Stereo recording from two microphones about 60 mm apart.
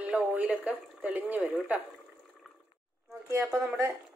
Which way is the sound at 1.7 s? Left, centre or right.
Right.